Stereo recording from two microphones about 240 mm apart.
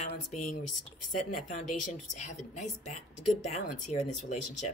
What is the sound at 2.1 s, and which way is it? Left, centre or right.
Speech, left.